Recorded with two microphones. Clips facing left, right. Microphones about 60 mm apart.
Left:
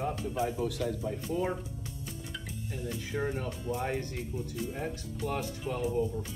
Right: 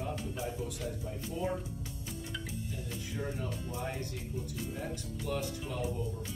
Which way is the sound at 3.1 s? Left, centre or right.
Left.